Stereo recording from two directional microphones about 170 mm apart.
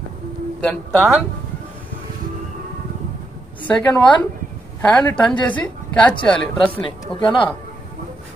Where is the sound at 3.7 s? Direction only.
5° left (ahead or behind).